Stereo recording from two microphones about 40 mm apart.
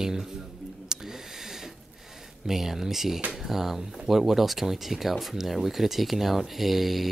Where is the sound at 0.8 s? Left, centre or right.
Centre.